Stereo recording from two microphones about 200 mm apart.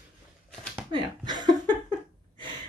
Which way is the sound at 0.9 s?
25° right (ahead or behind).